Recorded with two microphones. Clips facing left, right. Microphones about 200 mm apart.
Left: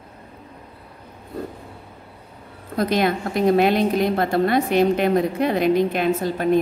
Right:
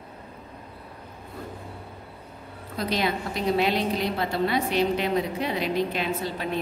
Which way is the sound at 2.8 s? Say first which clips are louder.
Left 6 dB; 50° left (ahead or behind).